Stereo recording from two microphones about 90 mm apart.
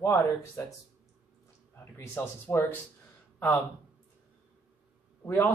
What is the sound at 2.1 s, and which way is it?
Speech, 20° left (ahead or behind).